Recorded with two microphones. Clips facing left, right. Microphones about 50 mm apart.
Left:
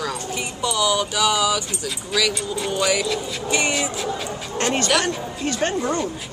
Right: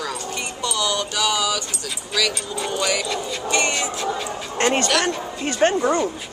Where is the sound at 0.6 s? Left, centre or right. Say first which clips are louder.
Left 3 dB; centre.